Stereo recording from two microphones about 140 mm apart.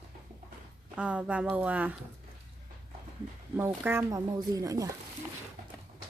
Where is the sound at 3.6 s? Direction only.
15° right (ahead or behind).